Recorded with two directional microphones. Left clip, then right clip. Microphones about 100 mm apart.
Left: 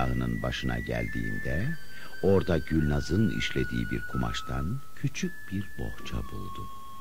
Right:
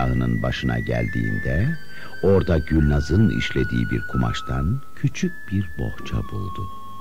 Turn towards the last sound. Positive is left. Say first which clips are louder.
# right 8 dB
turn(degrees=35)  # may be behind; listen again after turning